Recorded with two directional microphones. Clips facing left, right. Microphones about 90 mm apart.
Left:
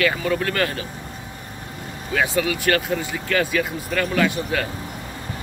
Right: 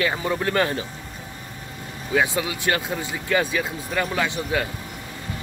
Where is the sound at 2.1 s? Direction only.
20° right (ahead or behind).